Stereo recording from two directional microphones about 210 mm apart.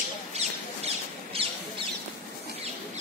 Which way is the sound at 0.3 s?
30° right (ahead or behind).